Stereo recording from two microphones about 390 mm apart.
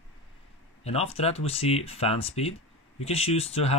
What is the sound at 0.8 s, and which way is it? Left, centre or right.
Speech, centre.